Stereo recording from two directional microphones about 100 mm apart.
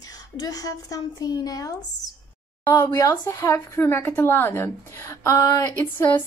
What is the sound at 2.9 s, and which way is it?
A woman's voice, 35° left (ahead or behind).